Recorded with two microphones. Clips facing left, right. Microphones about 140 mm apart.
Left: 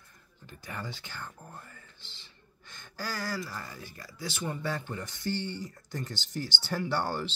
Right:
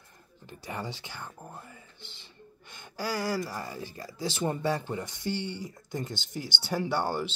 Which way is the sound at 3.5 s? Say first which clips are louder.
Right 5 dB; 25° right (ahead or behind).